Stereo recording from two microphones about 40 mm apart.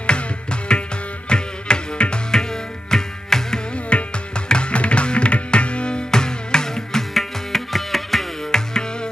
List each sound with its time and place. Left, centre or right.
0.0 s music: left
2.9 s music: centre
3.9 s music: left
7.2 s music: centre
8.5 s music: centre